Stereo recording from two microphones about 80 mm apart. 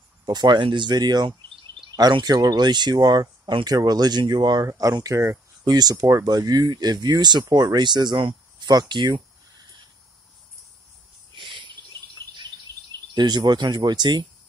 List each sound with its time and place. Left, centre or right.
0.2 s speech: right
2.0 s speech: right
4.6 s speech: right
5.7 s speech: right
6.0 s speech: right
6.3 s speech: right
11.3 s cricket: right
13.1 s speech: right